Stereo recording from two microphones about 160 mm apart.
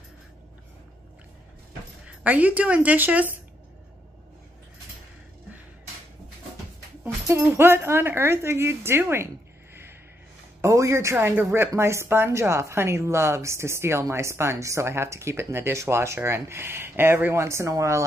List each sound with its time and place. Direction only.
2.0 s a woman's voice: 10° right (ahead or behind)
7.2 s a woman's voice: 15° right (ahead or behind)
10.6 s a woman's voice: 20° right (ahead or behind)